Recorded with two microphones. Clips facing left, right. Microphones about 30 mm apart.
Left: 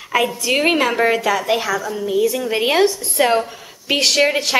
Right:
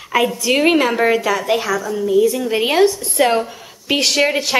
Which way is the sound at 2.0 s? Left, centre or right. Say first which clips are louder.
Right 4 dB; left.